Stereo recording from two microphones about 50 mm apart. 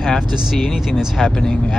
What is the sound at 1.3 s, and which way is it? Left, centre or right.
Speech, centre.